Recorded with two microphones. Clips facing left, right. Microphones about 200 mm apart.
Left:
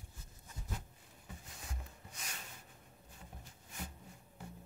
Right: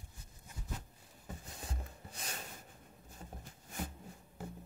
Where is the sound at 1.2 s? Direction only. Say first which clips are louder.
Right 5 dB; 35° right (ahead or behind).